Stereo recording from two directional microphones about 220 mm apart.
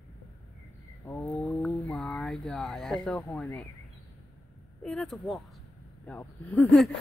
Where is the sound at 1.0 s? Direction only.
10° left (ahead or behind).